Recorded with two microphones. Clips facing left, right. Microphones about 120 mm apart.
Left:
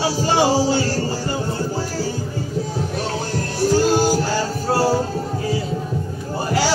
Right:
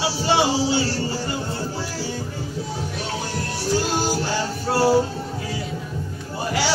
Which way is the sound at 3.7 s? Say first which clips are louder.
Left 5 dB; 40° left (ahead or behind).